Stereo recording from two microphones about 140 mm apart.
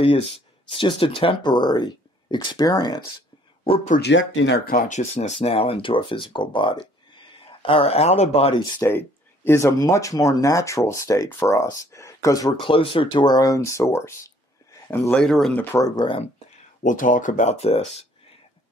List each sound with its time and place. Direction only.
0.0 s speech: 45° left (ahead or behind); by 3.0 s 30° left (ahead or behind)
4.6 s speech: 65° left (ahead or behind); by 8.8 s 45° left (ahead or behind)
8.8 s speech: 15° left (ahead or behind)
15.1 s speech: 5° left (ahead or behind)
15.7 s speech: 25° left (ahead or behind)
16.8 s speech: 70° left (ahead or behind); by 17.8 s 45° left (ahead or behind)